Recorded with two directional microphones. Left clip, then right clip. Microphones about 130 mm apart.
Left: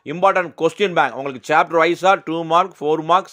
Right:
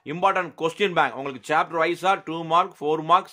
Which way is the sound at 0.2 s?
35° left (ahead or behind).